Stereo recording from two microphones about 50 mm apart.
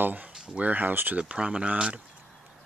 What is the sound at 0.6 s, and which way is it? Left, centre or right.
Speech, right.